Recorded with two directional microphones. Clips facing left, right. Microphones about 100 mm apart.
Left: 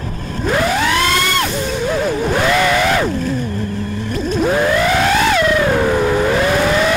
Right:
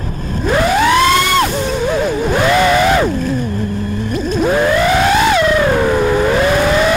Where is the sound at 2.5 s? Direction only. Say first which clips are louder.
Right 5 dB; 15° right (ahead or behind).